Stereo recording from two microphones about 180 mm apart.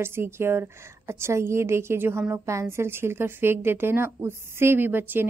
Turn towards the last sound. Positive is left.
turn(degrees=-10)  # may be behind; listen again after turning